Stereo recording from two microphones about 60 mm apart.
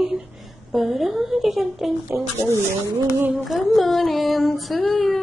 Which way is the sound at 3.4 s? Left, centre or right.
Centre.